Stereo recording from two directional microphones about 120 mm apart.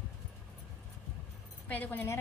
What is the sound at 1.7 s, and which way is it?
Speech, 15° left (ahead or behind).